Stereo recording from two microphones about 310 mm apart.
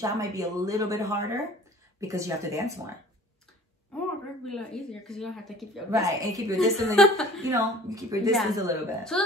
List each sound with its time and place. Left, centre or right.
0.0 s speech: centre
4.5 s speech: centre
5.9 s speech: centre
7.0 s speech: centre
7.4 s speech: centre
8.3 s speech: centre
8.5 s speech: centre